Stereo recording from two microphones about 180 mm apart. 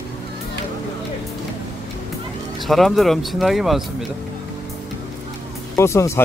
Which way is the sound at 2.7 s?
Centre (ahead or behind).